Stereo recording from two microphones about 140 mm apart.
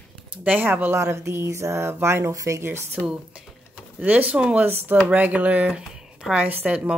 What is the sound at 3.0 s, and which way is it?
Speech, 5° right (ahead or behind).